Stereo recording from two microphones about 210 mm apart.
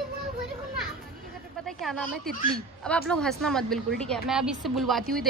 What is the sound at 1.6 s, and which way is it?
A woman's voice, centre (ahead or behind).